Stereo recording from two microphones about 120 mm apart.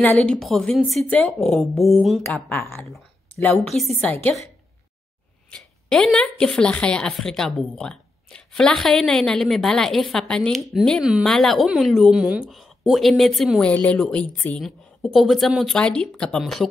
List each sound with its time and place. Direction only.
0.0 s speech: 10° left (ahead or behind)
2.3 s speech: 20° left (ahead or behind)
3.6 s speech: centre (ahead or behind)
4.0 s a woman's voice: 15° left (ahead or behind)
5.5 s speech: 5° left (ahead or behind)